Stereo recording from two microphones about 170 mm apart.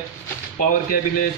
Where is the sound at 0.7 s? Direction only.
55° left (ahead or behind).